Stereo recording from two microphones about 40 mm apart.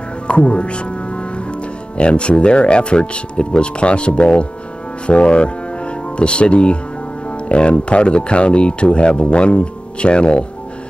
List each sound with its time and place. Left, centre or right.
0.3 s speech: left
7.2 s music: left
7.9 s speech: left